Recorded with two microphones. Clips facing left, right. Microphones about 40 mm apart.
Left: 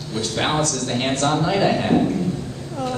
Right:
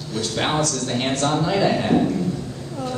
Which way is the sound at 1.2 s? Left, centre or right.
Centre.